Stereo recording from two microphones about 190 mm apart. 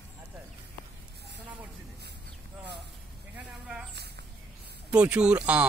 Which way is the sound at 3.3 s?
5° right (ahead or behind).